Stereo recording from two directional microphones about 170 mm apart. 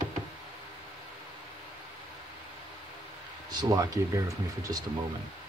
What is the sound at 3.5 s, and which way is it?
Speech, 25° right (ahead or behind).